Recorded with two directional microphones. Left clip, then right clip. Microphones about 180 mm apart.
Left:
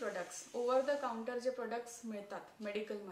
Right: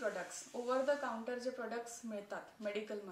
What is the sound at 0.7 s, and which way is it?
A woman's voice, 15° left (ahead or behind).